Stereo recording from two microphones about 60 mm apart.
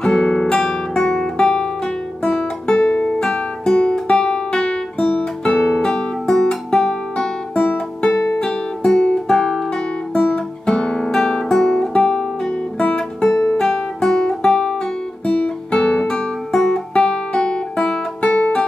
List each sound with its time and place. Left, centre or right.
0.0 s guitar: centre
3.2 s music: centre
10.1 s guitar: centre
13.3 s music: centre